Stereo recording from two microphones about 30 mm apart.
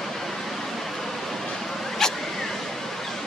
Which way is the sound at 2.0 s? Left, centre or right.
Centre.